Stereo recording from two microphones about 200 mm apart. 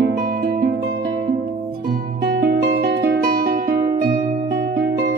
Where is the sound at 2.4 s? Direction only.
50° right (ahead or behind).